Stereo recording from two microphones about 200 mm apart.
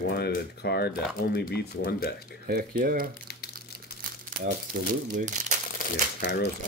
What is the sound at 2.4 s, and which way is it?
Speech, 45° right (ahead or behind).